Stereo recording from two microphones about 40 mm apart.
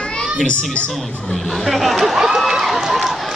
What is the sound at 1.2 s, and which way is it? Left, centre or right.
Run, centre.